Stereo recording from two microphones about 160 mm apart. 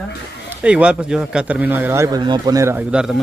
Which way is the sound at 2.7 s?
5° right (ahead or behind).